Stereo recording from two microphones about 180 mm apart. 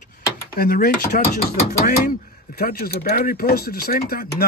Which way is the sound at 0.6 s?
55° left (ahead or behind).